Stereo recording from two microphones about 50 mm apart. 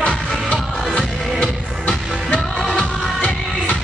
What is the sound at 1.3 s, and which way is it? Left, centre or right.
Music, left.